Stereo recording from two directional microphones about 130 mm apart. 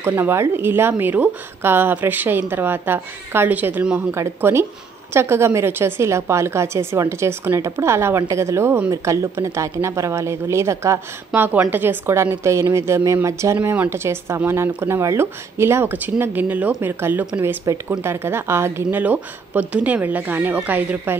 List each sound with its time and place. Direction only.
0.0 s a woman's voice: 15° right (ahead or behind)